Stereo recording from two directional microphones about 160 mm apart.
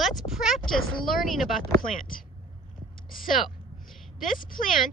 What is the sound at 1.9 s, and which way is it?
Speech, 60° left (ahead or behind).